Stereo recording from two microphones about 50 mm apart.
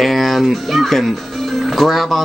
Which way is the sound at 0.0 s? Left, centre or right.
Centre.